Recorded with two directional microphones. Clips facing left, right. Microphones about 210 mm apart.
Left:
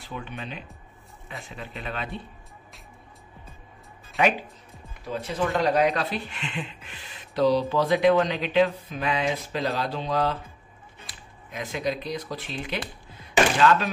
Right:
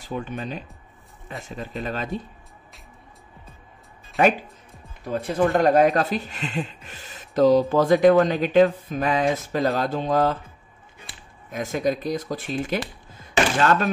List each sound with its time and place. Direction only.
0.0 s speech: 40° right (ahead or behind)
4.2 s speech: 45° right (ahead or behind)
11.5 s speech: 45° right (ahead or behind)
13.1 s chopping: 45° right (ahead or behind)